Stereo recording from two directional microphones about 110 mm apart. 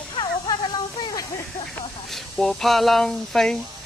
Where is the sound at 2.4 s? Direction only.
5° left (ahead or behind).